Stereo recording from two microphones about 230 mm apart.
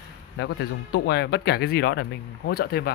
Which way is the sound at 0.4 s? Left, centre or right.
Left.